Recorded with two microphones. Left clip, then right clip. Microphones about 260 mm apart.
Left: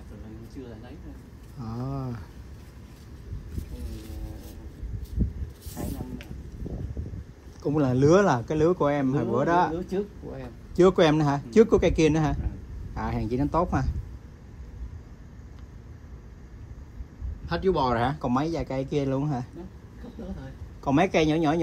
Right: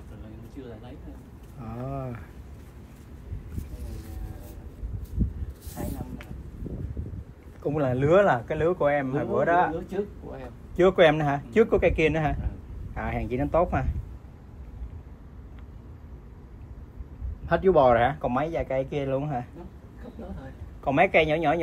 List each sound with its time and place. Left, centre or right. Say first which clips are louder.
1.6 s speech: right 1 dB; centre
3.8 s music: left 2 dB; centre
7.6 s speech: left 2 dB; centre
10.8 s speech: right 1 dB; centre
17.5 s a man's voice: right 6 dB; centre
17.9 s speech: right 3 dB; centre
20.8 s speech: right 2 dB; centre